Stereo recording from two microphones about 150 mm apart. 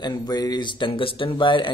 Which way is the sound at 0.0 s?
25° left (ahead or behind).